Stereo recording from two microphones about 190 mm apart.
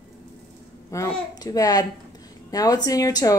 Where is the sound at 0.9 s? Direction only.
15° left (ahead or behind).